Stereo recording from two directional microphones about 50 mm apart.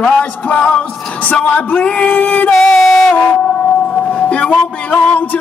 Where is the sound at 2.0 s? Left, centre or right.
Left.